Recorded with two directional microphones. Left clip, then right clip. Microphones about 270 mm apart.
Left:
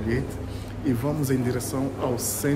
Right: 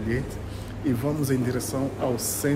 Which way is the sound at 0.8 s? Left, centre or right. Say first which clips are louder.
Even; centre.